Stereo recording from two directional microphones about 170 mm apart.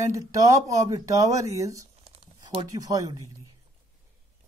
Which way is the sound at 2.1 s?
35° right (ahead or behind).